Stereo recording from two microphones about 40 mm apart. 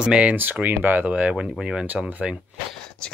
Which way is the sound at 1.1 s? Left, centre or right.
Right.